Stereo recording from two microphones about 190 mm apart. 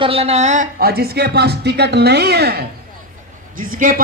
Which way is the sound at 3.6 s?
45° right (ahead or behind).